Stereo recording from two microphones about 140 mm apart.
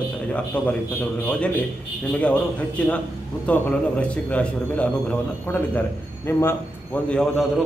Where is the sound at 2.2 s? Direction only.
10° left (ahead or behind).